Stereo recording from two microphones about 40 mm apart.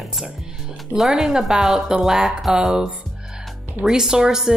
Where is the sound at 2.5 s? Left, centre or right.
Centre.